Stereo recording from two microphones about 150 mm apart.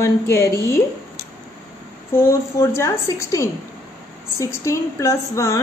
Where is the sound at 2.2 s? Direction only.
20° left (ahead or behind).